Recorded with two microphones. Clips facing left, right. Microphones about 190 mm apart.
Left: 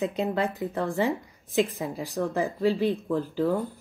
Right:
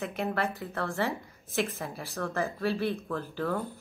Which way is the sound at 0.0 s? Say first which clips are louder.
Left 5 dB; 20° left (ahead or behind).